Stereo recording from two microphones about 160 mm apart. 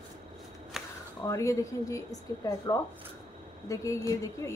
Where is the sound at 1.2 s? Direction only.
20° left (ahead or behind).